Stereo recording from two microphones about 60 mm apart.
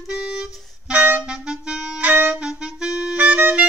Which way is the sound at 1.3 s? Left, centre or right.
Centre.